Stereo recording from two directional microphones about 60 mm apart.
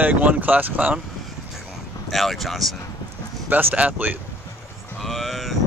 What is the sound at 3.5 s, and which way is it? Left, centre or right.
Speech, right.